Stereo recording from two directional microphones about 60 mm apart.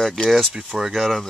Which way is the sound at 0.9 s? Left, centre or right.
Centre.